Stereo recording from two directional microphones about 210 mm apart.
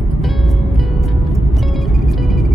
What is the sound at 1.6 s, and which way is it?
Music, centre (ahead or behind).